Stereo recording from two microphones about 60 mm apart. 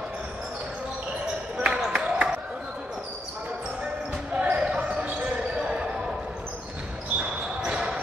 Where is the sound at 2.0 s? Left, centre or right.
Centre.